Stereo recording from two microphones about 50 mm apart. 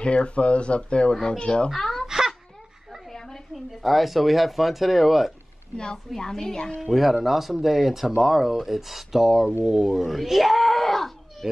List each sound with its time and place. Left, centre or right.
0.0 s a woman's voice: left
1.8 s a sound: centre
2.0 s wail: centre
3.1 s speech: centre
6.1 s a woman's voice: centre
6.8 s speech: centre